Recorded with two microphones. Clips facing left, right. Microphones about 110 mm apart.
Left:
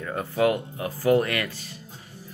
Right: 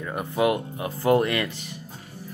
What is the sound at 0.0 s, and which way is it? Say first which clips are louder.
Speech: even; 20° right (ahead or behind).